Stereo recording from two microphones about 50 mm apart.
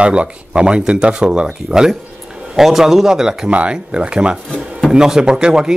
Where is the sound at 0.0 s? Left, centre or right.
Right.